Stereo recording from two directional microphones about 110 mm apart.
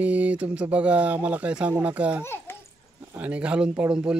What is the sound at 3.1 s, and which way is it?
Speech, 10° right (ahead or behind).